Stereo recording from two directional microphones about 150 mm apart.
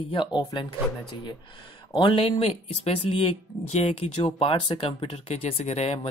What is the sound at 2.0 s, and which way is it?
Speech, 35° left (ahead or behind).